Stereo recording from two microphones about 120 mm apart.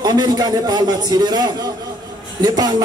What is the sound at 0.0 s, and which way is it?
Speech, 35° right (ahead or behind).